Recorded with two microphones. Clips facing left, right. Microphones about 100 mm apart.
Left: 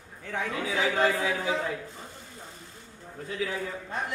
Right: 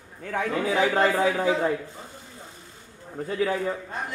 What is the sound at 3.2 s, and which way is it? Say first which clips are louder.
Speech: right 7 dB; 45° right (ahead or behind).